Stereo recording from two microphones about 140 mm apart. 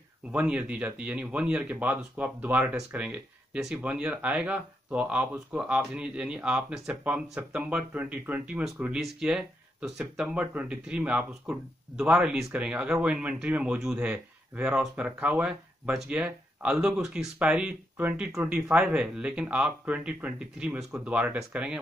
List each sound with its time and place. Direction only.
0.3 s speech: 10° right (ahead or behind)